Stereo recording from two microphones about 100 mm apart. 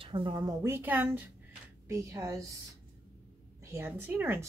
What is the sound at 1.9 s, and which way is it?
Speech, 30° right (ahead or behind).